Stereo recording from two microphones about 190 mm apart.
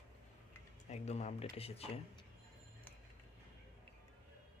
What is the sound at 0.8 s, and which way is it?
Speech, 35° left (ahead or behind).